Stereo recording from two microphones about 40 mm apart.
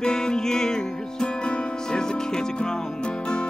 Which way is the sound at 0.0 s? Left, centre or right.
Centre.